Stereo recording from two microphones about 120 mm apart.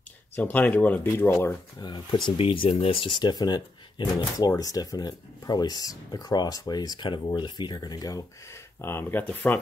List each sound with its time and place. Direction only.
0.4 s speech: 15° left (ahead or behind)
1.8 s speech: 40° left (ahead or behind)
2.3 s speech: 50° left (ahead or behind); by 8.2 s 30° left (ahead or behind)
8.8 s speech: 15° left (ahead or behind)